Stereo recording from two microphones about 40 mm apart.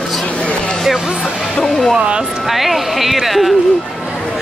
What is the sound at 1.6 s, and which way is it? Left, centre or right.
Speech, centre.